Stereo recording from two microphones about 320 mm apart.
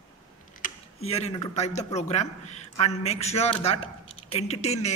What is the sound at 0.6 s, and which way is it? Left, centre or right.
A man's voice, left.